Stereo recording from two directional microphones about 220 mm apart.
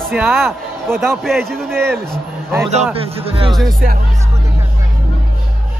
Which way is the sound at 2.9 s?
25° right (ahead or behind).